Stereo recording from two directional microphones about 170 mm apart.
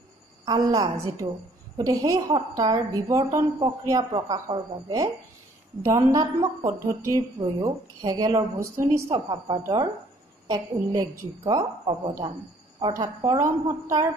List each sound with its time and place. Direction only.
0.5 s a woman's voice: 20° right (ahead or behind)